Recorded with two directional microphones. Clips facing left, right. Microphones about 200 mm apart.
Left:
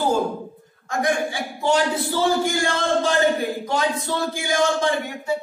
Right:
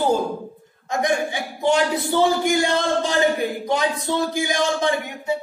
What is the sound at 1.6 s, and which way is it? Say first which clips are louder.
Speech: right 1 dB; 20° right (ahead or behind).